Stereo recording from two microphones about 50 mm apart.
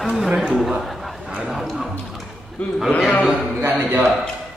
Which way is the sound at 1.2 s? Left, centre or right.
Right.